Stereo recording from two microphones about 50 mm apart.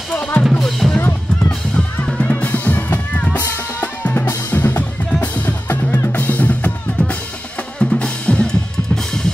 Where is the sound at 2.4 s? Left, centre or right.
Left.